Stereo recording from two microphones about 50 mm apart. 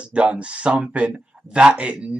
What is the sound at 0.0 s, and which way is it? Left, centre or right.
Speech, right.